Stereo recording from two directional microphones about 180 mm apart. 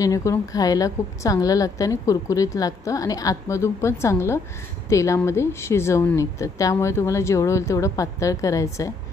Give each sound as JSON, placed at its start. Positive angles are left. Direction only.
{"t": 0.0, "sound": "a woman's voice", "side_deg": 15}